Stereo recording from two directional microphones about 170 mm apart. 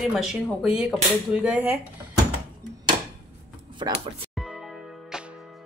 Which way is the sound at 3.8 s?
25° right (ahead or behind).